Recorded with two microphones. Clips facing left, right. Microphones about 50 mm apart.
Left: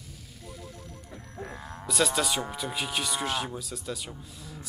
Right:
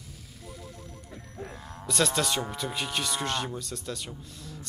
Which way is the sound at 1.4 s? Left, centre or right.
Centre.